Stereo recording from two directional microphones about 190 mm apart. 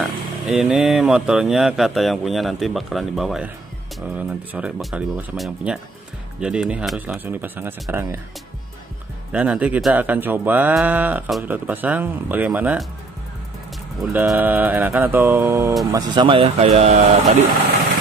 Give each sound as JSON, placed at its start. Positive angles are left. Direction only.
{"t": 0.0, "sound": "speech", "side_deg": 0}
{"t": 9.3, "sound": "speech", "side_deg": -5}
{"t": 14.0, "sound": "speech", "side_deg": 0}